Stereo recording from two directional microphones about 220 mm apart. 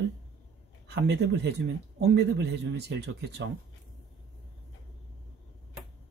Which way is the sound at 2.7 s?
50° right (ahead or behind).